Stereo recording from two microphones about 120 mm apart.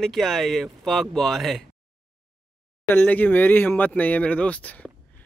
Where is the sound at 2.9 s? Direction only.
15° left (ahead or behind).